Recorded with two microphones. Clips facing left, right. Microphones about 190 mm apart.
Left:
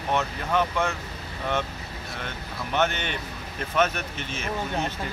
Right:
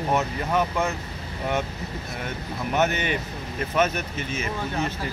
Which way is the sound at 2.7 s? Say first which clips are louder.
Right 2 dB; 5° right (ahead or behind).